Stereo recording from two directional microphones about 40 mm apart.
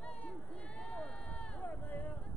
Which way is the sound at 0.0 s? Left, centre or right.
Left.